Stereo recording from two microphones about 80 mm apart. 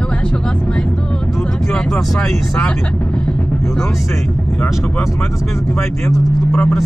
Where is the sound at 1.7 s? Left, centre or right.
Centre.